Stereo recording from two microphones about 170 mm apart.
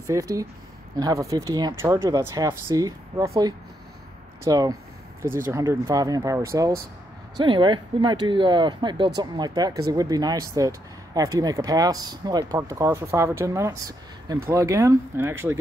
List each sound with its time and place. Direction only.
0.0 s speech: 20° right (ahead or behind)
4.5 s speech: 20° right (ahead or behind)
7.3 s speech: 25° right (ahead or behind)